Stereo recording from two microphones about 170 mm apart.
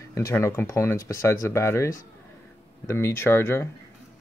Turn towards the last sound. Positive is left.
turn(degrees=15)  # may be behind; listen again after turning